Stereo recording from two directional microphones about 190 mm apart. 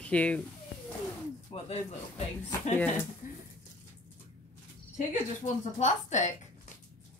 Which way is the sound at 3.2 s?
40° left (ahead or behind).